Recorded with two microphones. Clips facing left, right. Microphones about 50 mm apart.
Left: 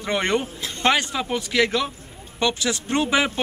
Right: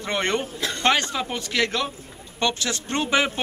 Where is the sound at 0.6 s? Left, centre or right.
Right.